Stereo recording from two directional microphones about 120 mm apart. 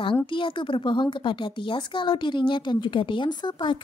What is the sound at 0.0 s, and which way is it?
A woman's voice, 45° left (ahead or behind).